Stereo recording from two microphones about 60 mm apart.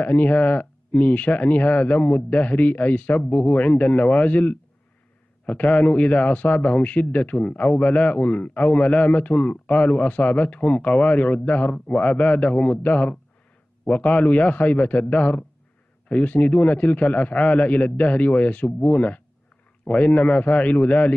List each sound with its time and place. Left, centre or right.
0.0 s a man's voice: left